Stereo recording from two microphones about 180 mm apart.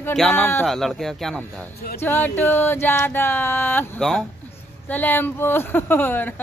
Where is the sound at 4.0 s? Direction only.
Centre (ahead or behind).